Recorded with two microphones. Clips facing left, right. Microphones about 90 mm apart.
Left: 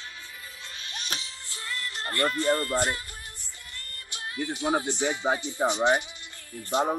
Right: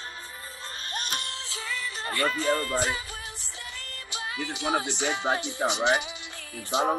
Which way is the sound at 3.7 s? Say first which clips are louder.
Right 3 dB; 90° right.